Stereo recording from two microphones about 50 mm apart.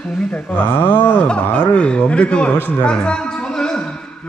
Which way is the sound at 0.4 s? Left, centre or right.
Left.